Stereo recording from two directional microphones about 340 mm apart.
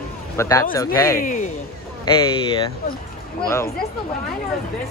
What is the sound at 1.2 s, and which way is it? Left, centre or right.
Speech, left.